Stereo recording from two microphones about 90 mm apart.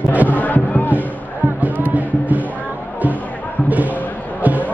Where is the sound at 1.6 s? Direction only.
20° right (ahead or behind).